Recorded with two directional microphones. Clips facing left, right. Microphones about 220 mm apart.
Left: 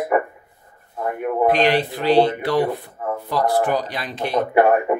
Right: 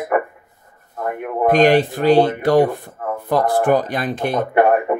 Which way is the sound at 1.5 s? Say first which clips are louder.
Right 6 dB; 45° right (ahead or behind).